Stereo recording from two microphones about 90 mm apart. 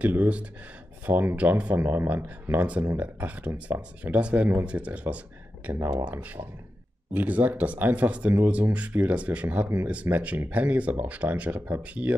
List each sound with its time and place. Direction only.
0.0 s speech: 20° right (ahead or behind)